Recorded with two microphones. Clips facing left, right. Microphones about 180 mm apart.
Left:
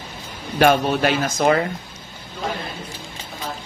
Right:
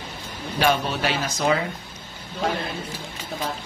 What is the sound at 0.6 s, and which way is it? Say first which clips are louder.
Speech: left 6 dB; 50° left (ahead or behind).